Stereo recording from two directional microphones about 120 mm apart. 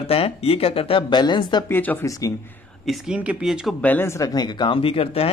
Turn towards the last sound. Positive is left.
turn(degrees=50)  # may be behind; listen again after turning